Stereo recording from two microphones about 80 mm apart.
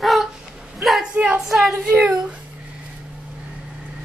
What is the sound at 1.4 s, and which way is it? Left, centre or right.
Speech, centre.